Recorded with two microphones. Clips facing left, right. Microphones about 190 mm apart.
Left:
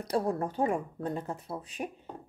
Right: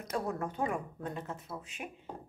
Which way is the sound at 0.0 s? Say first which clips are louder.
Left 5 dB; 35° left (ahead or behind).